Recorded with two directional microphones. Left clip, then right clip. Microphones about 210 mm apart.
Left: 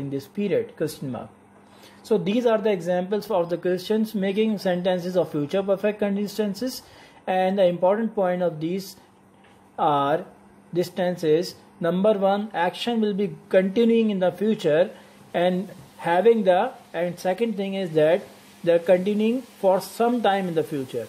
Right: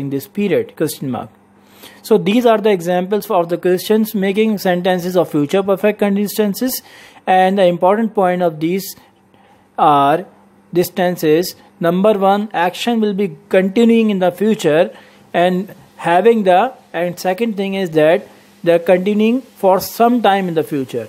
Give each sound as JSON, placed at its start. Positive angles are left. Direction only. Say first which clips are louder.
{"t": 0.1, "sound": "speech", "louder": "right 8 dB", "side_deg": -35}